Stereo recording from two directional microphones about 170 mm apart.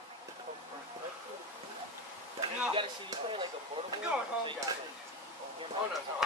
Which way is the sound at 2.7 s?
30° right (ahead or behind).